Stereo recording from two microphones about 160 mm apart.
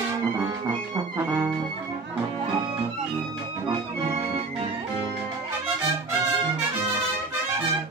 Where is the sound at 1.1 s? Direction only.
15° right (ahead or behind).